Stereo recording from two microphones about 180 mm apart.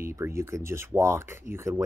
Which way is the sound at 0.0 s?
15° right (ahead or behind).